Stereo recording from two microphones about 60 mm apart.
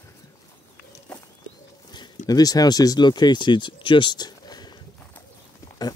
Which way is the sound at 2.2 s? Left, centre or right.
Left.